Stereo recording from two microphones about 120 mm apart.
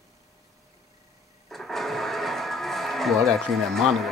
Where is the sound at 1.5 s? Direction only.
Centre (ahead or behind).